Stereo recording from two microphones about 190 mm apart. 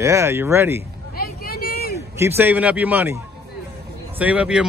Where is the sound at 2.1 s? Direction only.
10° right (ahead or behind).